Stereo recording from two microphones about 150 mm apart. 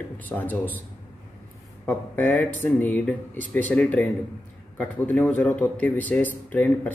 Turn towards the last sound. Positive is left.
turn(degrees=10)  # may be behind; listen again after turning